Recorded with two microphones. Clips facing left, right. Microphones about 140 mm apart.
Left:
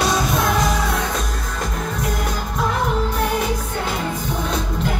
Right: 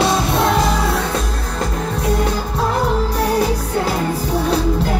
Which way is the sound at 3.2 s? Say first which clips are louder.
Right 4 dB; 35° right (ahead or behind).